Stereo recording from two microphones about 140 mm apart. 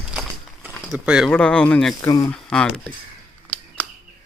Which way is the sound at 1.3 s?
5° left (ahead or behind).